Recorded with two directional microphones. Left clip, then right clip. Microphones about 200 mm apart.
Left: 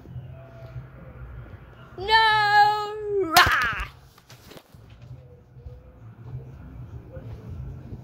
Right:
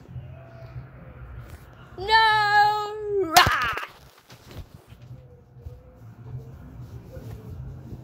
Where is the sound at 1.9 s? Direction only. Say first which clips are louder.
Even; centre (ahead or behind).